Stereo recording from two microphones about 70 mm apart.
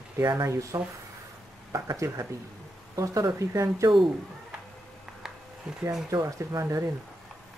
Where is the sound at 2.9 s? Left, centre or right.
Right.